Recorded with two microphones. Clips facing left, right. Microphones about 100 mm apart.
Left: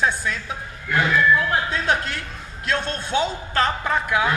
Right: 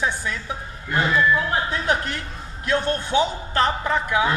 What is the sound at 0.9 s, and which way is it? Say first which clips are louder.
Speech: left 1 dB; 35° right (ahead or behind).